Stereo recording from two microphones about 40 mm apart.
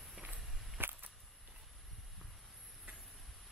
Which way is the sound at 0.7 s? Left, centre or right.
Right.